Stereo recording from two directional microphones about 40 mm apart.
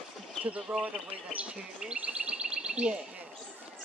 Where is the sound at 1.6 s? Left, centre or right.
Centre.